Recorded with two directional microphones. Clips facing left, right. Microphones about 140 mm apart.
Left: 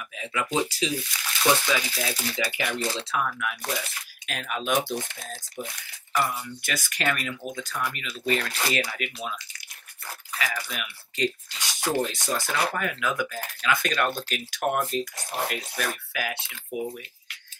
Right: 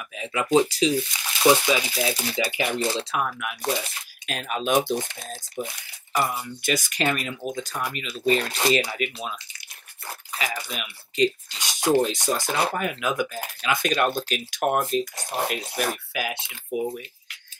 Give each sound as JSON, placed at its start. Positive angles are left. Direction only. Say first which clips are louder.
{"t": 0.1, "sound": "a sound", "louder": "right 3 dB", "side_deg": -25}
{"t": 0.6, "sound": "speech", "louder": "right 8 dB", "side_deg": -20}
{"t": 6.3, "sound": "speech", "louder": "right 6 dB", "side_deg": -20}